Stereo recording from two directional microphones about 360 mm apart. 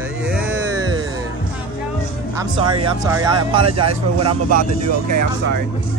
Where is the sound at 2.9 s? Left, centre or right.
Centre.